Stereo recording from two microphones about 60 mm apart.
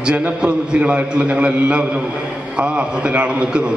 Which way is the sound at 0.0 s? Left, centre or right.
Centre.